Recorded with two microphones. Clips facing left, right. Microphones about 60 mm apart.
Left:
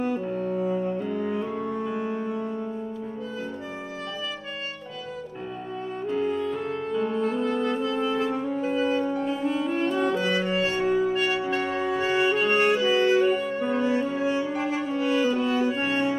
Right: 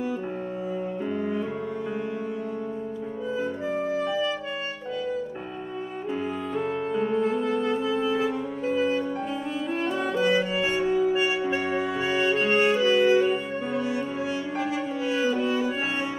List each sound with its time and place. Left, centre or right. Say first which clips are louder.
6.1 s music: left 3 dB; centre
13.7 s music: left 3 dB; left
15.2 s music: left 1 dB; centre
15.8 s saxophone: left 4 dB; centre